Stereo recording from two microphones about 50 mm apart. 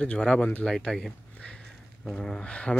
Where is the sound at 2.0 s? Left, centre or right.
Centre.